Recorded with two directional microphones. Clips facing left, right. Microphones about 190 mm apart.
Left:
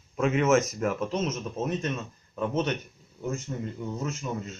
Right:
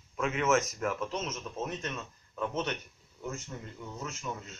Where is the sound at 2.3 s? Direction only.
15° left (ahead or behind).